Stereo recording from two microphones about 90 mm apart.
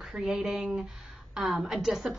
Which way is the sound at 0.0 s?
5° right (ahead or behind).